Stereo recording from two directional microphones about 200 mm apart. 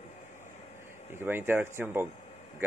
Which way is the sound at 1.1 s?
10° right (ahead or behind).